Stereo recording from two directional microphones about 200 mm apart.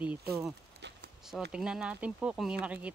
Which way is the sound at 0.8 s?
60° right (ahead or behind).